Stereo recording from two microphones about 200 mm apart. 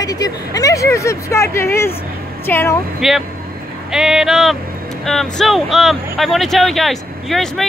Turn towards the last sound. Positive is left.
turn(degrees=0)  # may be behind; listen again after turning